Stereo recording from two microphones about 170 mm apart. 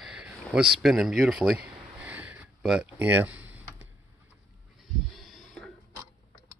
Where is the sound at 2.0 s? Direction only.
10° right (ahead or behind).